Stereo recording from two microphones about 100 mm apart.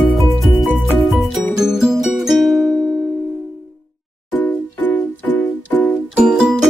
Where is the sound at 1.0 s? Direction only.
Centre (ahead or behind).